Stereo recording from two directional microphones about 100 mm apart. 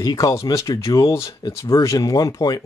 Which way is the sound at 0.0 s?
45° left (ahead or behind).